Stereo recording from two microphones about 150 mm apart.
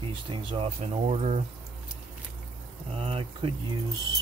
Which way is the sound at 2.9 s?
40° right (ahead or behind).